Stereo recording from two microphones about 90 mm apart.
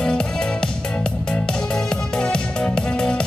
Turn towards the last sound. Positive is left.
turn(degrees=10)  # may be behind; listen again after turning